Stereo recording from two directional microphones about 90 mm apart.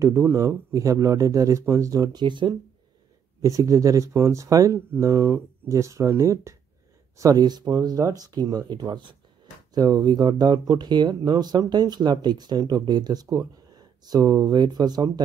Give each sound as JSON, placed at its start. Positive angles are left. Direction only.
{"t": 0.0, "sound": "speech", "side_deg": -30}
{"t": 2.1, "sound": "speech", "side_deg": -60}
{"t": 3.4, "sound": "speech", "side_deg": -40}
{"t": 9.8, "sound": "speech", "side_deg": -45}